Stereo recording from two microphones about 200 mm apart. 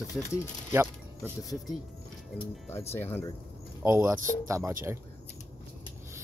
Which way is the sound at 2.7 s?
10° left (ahead or behind).